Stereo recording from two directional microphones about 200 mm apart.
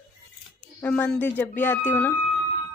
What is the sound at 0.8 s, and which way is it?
Speech, 5° left (ahead or behind).